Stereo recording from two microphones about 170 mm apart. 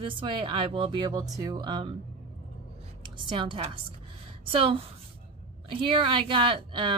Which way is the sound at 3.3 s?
30° right (ahead or behind).